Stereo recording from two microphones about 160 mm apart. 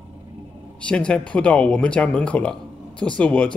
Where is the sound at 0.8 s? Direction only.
5° left (ahead or behind).